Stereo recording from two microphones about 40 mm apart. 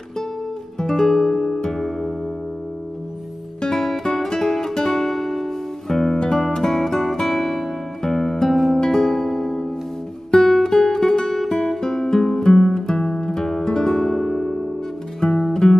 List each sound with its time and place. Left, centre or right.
0.7 s music: centre
3.6 s music: centre
6.1 s music: centre
9.0 s music: centre